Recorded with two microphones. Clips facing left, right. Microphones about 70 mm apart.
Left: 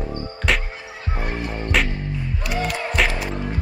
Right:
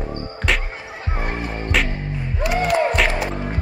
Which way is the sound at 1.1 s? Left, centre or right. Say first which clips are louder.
Right 1 dB; right.